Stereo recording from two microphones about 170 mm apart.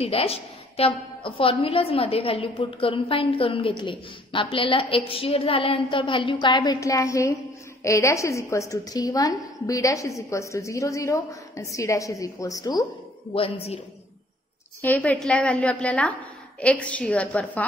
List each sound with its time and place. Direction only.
0.0 s a woman's voice: 35° left (ahead or behind)
13.3 s a woman's voice: 35° left (ahead or behind)
14.8 s a woman's voice: 10° left (ahead or behind)